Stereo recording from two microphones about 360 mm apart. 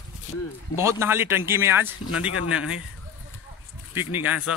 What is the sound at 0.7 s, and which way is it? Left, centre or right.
Speech, centre.